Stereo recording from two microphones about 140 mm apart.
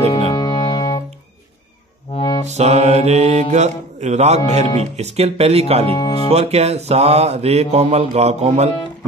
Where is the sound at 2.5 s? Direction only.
55° right (ahead or behind).